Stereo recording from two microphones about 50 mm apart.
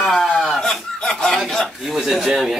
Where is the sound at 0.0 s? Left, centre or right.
Centre.